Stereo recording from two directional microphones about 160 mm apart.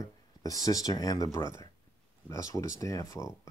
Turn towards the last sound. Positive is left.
turn(degrees=20)  # may be behind; listen again after turning